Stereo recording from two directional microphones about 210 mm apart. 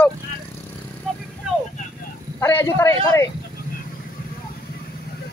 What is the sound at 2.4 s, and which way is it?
Speech, 15° left (ahead or behind).